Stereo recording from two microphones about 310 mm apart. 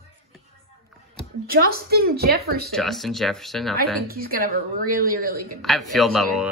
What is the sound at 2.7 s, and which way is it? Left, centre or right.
Speech, centre.